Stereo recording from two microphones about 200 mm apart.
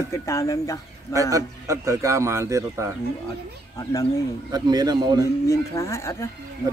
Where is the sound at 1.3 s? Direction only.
15° right (ahead or behind).